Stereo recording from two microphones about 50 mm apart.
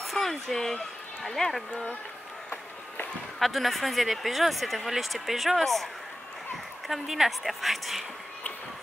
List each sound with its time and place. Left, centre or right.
0.0 s speech: centre
1.7 s speech: centre
3.3 s speech: centre
6.9 s speech: centre